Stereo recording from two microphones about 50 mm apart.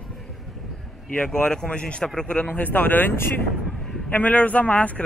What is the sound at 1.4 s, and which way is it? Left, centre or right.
A man's voice, centre.